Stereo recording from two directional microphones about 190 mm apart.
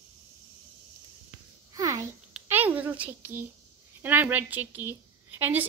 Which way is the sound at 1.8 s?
15° right (ahead or behind).